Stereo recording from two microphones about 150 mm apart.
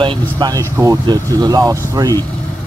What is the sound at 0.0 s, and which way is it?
Speech, 30° right (ahead or behind).